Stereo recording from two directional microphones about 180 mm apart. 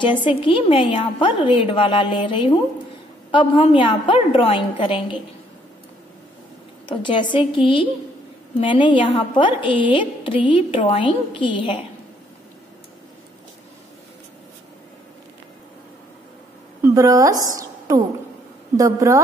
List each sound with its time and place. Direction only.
0.0 s a woman's voice: 25° left (ahead or behind)
6.9 s a woman's voice: 25° left (ahead or behind)
16.8 s a woman's voice: 20° right (ahead or behind)